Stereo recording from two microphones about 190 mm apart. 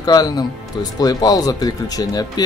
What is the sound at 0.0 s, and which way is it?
Speech, 20° left (ahead or behind).